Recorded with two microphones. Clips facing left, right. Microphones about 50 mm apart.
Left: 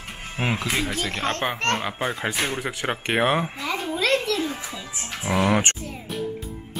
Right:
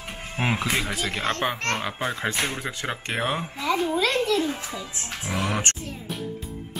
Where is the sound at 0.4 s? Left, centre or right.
Centre.